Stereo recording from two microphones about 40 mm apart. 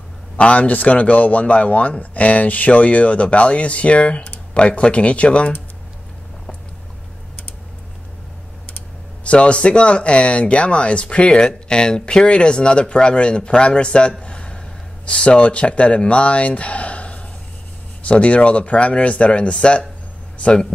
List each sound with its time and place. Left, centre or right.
0.4 s speech: left
9.2 s speech: left
14.2 s a sound: left
15.0 s speech: left